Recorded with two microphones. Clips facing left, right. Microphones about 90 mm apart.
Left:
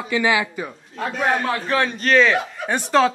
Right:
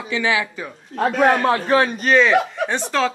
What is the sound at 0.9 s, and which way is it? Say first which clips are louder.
Speech: right 5 dB; 45° right (ahead or behind).